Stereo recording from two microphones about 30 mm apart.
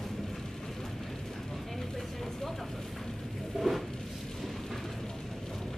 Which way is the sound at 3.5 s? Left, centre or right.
Centre.